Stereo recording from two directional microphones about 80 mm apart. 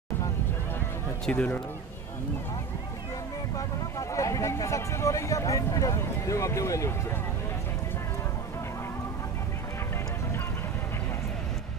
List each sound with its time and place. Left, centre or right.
1.3 s speech: left
4.1 s speech: left